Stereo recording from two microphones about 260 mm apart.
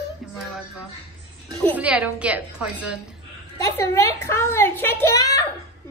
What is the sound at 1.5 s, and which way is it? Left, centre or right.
Speech, centre.